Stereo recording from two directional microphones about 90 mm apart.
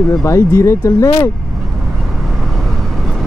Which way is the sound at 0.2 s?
35° left (ahead or behind).